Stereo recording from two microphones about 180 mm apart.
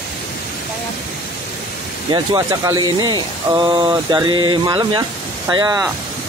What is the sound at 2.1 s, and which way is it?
Speech, 20° right (ahead or behind).